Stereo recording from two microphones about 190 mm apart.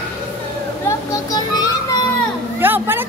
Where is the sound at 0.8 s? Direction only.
20° left (ahead or behind).